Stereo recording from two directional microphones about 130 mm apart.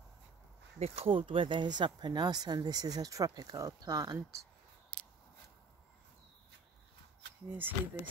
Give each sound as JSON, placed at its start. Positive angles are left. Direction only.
{"t": 0.7, "sound": "speech", "side_deg": -55}
{"t": 7.4, "sound": "speech", "side_deg": -15}